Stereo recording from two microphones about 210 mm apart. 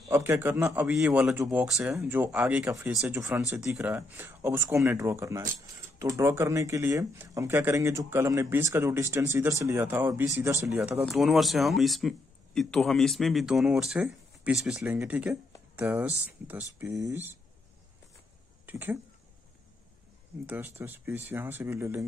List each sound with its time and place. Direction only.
0.1 s speech: 10° right (ahead or behind)
18.7 s speech: 10° right (ahead or behind)
20.4 s speech: 10° right (ahead or behind)